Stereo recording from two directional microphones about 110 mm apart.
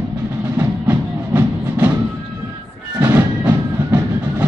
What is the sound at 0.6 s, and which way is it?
Music, 20° right (ahead or behind).